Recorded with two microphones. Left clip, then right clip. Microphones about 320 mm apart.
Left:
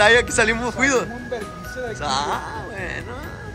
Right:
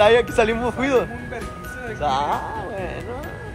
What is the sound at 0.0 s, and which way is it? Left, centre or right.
Speech, centre.